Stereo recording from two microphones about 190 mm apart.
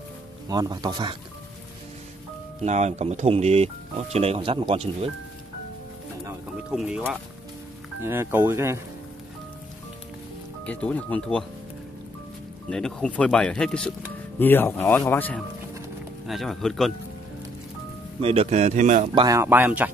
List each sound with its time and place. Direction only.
0.5 s speech: 20° right (ahead or behind)
2.6 s speech: 35° right (ahead or behind)
6.7 s speech: 5° right (ahead or behind)
10.6 s speech: 5° left (ahead or behind)
12.6 s speech: 5° left (ahead or behind)
18.2 s speech: 30° right (ahead or behind)
19.1 s speech: 20° right (ahead or behind)